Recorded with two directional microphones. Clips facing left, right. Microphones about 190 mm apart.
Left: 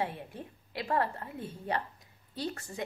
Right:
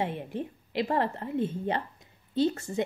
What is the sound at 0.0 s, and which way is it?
A woman's voice, 20° right (ahead or behind).